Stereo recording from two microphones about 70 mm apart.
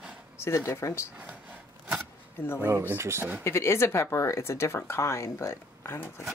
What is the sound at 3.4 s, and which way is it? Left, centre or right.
Speech, left.